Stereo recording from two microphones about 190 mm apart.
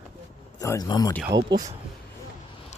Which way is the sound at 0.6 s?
20° left (ahead or behind).